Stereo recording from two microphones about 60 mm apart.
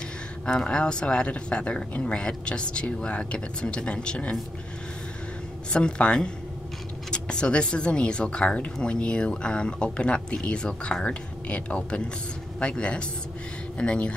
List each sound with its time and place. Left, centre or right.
0.5 s speech: centre
5.7 s speech: centre